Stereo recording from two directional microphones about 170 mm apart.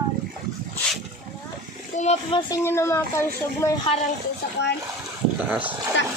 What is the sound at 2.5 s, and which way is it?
Speech, 15° left (ahead or behind).